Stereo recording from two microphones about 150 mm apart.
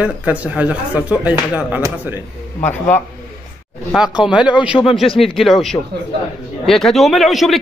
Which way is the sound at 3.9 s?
5° right (ahead or behind).